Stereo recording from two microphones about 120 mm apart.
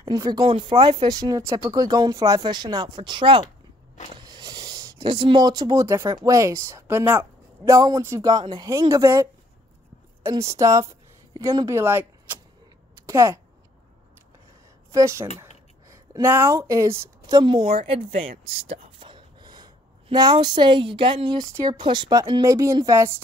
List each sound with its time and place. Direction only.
0.0 s speech: 35° right (ahead or behind)
0.5 s a woman's voice: 50° right (ahead or behind)
1.0 s speech: 30° right (ahead or behind)
4.2 s a sound: 35° right (ahead or behind)
5.9 s speech: 20° right (ahead or behind)
10.3 s a woman's voice: 25° right (ahead or behind)
14.9 s speech: 25° right (ahead or behind)
17.3 s a woman's voice: 35° right (ahead or behind); by 18.9 s 60° right (ahead or behind)
18.9 s a sound: 40° right (ahead or behind)
21.6 s speech: 40° right (ahead or behind)
22.4 s speech: 25° right (ahead or behind)